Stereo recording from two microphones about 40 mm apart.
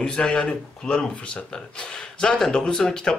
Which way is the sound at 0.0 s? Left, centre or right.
Centre.